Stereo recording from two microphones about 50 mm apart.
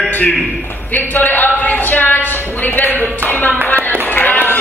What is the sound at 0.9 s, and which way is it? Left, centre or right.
A man's voice, left.